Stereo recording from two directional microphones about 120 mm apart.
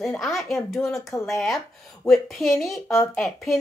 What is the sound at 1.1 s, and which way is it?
Speech, 15° left (ahead or behind).